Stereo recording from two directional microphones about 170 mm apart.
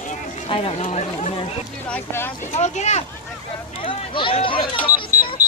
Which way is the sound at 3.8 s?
30° left (ahead or behind).